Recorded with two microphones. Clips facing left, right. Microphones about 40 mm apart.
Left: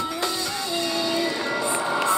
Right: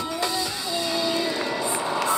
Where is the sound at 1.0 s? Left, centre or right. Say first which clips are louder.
Left 1 dB; centre.